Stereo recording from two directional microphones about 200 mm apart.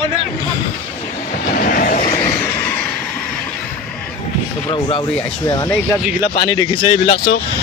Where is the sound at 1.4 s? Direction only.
45° left (ahead or behind).